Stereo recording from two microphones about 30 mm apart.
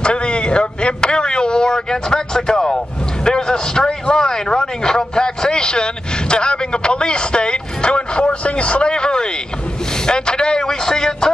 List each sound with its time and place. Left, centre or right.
0.0 s a man's voice: left